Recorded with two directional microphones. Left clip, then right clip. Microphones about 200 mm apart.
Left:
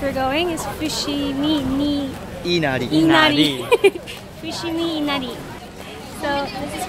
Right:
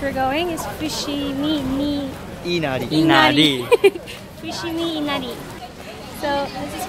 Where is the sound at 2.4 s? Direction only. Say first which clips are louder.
Left 2 dB; 20° left (ahead or behind).